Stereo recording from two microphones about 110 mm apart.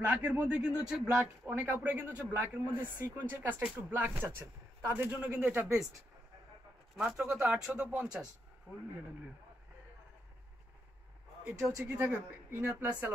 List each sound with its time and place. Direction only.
0.0 s speech: 15° right (ahead or behind)
7.0 s speech: 5° right (ahead or behind)
8.7 s speech: 25° right (ahead or behind)
11.4 s speech: 15° right (ahead or behind)